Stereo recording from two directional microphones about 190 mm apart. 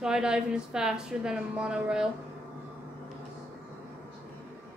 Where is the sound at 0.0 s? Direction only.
5° right (ahead or behind).